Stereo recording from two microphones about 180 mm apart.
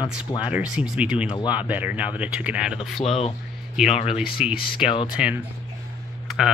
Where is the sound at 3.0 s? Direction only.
35° left (ahead or behind).